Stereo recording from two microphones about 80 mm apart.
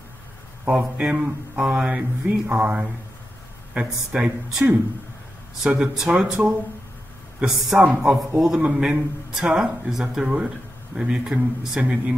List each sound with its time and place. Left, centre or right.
0.7 s a man's voice: centre